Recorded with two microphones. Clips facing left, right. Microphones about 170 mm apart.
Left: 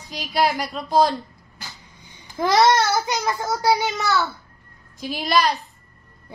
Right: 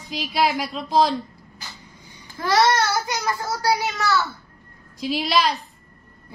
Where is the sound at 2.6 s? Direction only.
25° left (ahead or behind).